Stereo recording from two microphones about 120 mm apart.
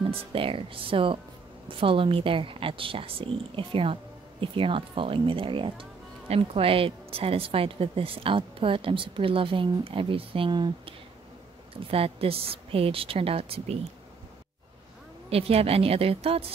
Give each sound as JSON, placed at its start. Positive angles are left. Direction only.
{"t": 0.2, "sound": "a woman's voice", "side_deg": -50}
{"t": 15.2, "sound": "a woman's voice", "side_deg": -55}